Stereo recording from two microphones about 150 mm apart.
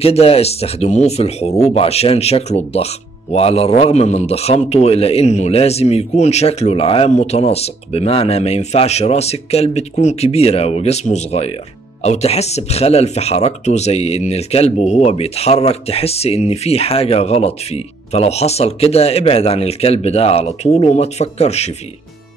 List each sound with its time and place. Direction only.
0.0 s speech: 40° left (ahead or behind)